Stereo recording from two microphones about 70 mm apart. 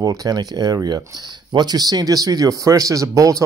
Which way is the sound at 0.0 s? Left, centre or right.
Right.